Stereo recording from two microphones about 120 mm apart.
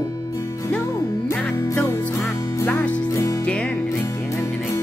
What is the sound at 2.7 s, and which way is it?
Music, 10° left (ahead or behind).